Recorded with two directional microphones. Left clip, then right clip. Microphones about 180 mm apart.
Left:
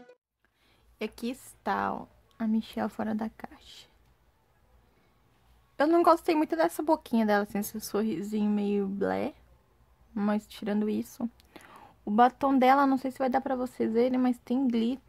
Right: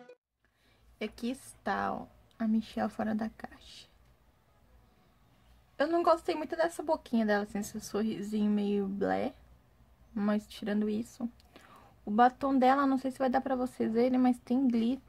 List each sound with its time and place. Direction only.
0.9 s speech: 30° left (ahead or behind)
5.8 s speech: 40° left (ahead or behind)